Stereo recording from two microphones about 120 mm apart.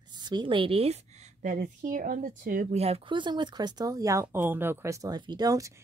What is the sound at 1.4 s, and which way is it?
Speech, 90° right.